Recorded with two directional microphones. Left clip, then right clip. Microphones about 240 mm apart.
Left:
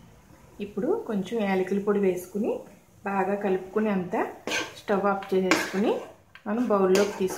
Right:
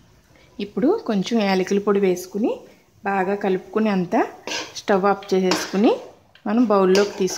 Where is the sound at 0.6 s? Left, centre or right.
Right.